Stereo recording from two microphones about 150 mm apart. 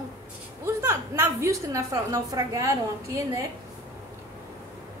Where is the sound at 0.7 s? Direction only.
20° right (ahead or behind).